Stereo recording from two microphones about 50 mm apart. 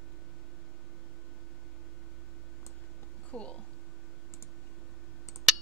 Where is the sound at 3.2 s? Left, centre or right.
Left.